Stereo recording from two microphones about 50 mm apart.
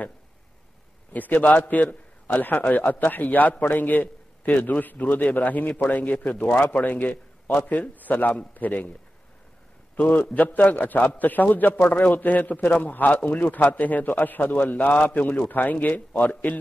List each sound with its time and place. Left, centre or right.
1.1 s a man's voice: left
9.9 s a man's voice: left